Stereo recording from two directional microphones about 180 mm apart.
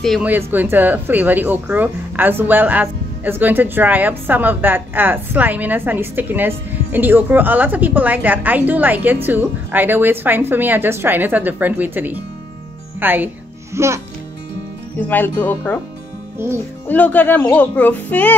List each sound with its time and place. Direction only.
0.0 s speech: centre (ahead or behind)
0.3 s speech: 10° right (ahead or behind)
15.0 s speech: 10° left (ahead or behind)
16.3 s speech: 15° right (ahead or behind)
16.8 s speech: 10° left (ahead or behind)